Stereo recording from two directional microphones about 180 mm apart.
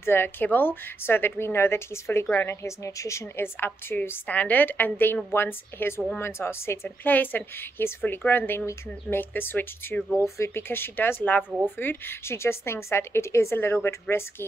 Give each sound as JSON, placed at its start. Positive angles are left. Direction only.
{"t": 0.0, "sound": "a woman's voice", "side_deg": 10}